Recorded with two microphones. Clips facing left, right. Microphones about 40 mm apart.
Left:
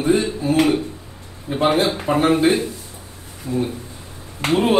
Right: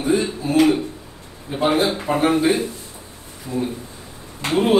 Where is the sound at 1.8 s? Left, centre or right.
Centre.